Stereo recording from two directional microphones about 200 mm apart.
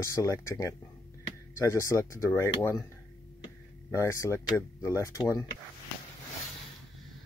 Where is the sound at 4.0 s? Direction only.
15° left (ahead or behind).